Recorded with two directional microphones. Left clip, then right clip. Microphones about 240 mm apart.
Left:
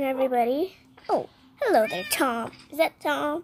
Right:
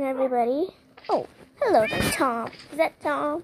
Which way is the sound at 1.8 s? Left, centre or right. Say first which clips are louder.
Right 2 dB; centre.